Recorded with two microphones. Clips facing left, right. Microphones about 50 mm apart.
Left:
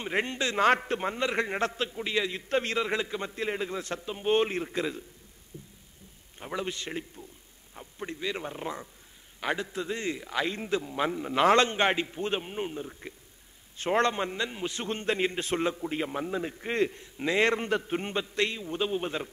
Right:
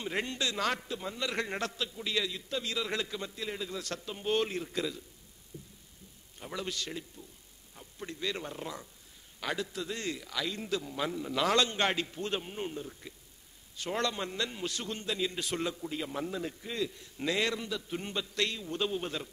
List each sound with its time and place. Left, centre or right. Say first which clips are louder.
0.0 s a man's voice: left 4 dB; left
0.7 s a man's voice: left 8 dB; left
1.2 s a man's voice: left 3 dB; left
2.5 s a man's voice: left 9 dB; left
2.8 s a man's voice: left 5 dB; left
5.5 s a sound: left 2 dB; left
6.4 s a man's voice: left 4 dB; left
13.7 s a man's voice: left 7 dB; left
16.5 s a man's voice: left 7 dB; left
17.0 s a man's voice: left 6 dB; left